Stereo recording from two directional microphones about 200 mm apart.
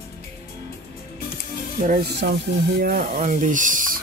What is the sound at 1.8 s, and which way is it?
Speech, 45° right (ahead or behind).